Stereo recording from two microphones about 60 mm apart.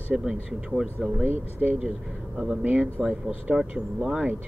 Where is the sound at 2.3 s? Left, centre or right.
Centre.